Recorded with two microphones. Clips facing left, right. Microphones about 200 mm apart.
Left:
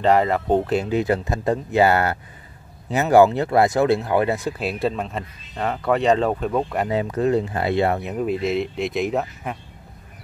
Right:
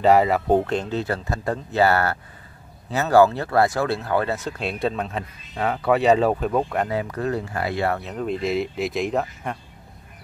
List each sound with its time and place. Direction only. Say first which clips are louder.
0.0 s speech: right 1 dB; 5° right (ahead or behind)
0.7 s speech: left 4 dB; 10° left (ahead or behind)
6.9 s speech: left 5 dB; 20° left (ahead or behind); by 9.6 s 5° left (ahead or behind)